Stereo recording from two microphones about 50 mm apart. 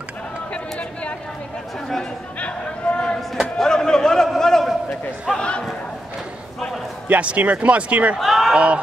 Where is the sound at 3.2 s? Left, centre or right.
Centre.